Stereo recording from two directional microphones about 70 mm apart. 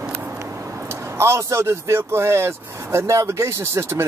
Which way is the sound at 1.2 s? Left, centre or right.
Right.